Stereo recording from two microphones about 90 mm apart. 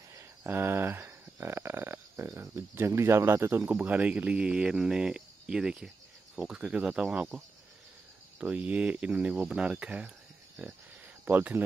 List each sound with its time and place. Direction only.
0.4 s speech: 25° right (ahead or behind)
3.6 s speech: 15° right (ahead or behind)
11.2 s speech: 20° right (ahead or behind)